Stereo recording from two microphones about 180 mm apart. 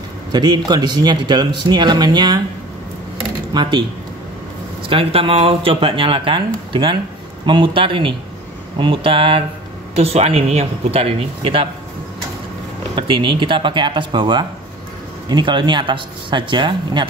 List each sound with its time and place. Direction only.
0.3 s a man's voice: 25° right (ahead or behind)
4.8 s a man's voice: 30° right (ahead or behind)
12.9 s a man's voice: 25° right (ahead or behind)